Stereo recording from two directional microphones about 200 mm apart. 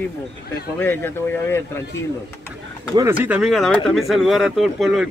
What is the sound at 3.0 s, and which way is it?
Speech, 10° right (ahead or behind).